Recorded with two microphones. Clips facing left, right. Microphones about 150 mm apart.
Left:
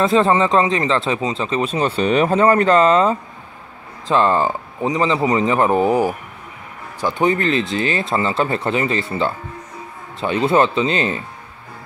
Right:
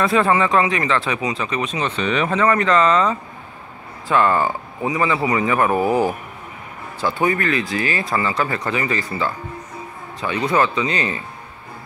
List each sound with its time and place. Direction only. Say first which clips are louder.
0.0 s speech: left 2 dB; 25° left (ahead or behind)